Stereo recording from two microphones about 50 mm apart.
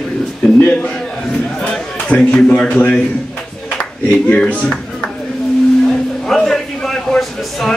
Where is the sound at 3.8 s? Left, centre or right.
Left.